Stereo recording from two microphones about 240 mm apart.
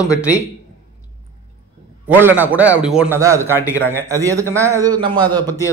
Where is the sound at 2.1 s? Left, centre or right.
Centre.